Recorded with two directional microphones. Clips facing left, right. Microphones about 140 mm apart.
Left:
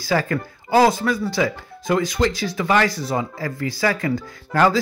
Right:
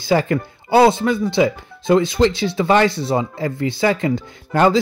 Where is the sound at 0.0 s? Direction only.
25° right (ahead or behind).